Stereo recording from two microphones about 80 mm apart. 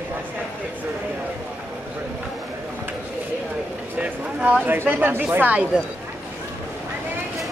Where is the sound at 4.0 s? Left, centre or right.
Centre.